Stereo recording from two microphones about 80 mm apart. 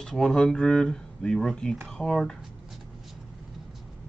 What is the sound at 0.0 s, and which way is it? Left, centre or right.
Speech, centre.